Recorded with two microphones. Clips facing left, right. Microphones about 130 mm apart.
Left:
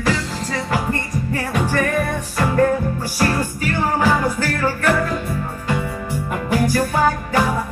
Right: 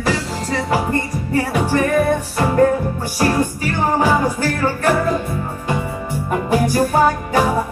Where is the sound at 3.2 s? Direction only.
20° right (ahead or behind).